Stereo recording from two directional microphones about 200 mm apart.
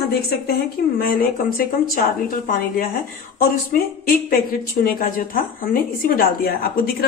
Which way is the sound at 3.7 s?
45° left (ahead or behind).